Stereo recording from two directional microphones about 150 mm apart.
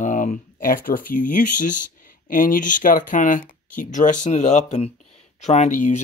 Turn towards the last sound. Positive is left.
turn(degrees=55)  # may be behind; listen again after turning